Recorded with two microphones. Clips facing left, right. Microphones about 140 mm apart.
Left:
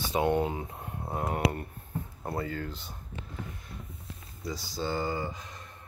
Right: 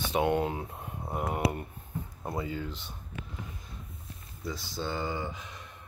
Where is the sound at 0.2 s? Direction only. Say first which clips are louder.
Left 1 dB; 10° right (ahead or behind).